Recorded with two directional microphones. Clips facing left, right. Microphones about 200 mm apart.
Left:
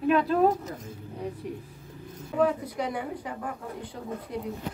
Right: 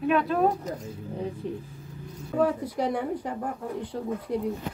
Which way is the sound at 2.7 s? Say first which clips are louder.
Right 4 dB; 40° right (ahead or behind).